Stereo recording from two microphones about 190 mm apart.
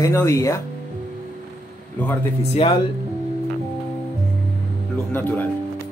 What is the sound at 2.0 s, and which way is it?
Speech, 10° left (ahead or behind).